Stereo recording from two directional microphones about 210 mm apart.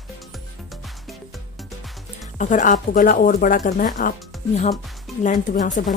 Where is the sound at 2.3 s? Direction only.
35° left (ahead or behind).